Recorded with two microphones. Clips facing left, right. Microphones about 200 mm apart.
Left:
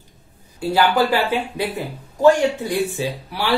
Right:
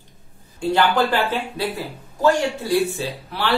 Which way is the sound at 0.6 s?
5° left (ahead or behind).